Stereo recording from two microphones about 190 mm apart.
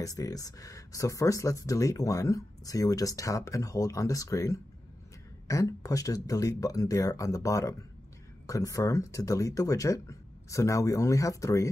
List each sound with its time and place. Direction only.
0.0 s speech: 20° left (ahead or behind)